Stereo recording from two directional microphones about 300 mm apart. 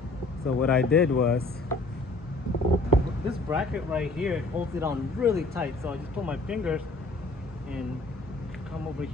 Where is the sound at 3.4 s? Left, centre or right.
Centre.